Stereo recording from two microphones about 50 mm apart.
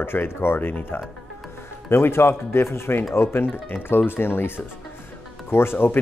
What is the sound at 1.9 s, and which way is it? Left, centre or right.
Speech, left.